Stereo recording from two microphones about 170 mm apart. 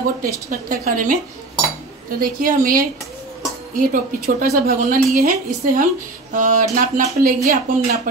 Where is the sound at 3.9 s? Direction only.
55° right (ahead or behind).